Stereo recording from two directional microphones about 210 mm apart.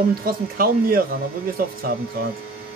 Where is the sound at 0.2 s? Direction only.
45° right (ahead or behind).